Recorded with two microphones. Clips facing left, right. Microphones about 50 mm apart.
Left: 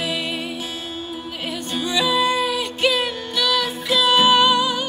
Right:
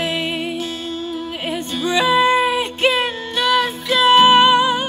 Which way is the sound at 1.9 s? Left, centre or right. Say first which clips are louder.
Right 5 dB; right.